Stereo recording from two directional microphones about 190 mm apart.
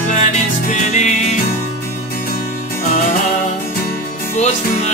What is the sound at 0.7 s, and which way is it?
Music, 40° left (ahead or behind).